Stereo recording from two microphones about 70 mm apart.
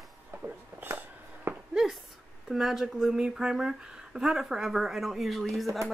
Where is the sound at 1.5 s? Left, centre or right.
Right.